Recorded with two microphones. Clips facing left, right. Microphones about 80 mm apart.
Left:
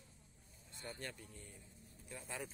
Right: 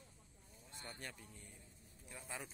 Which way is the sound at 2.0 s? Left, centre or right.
Centre.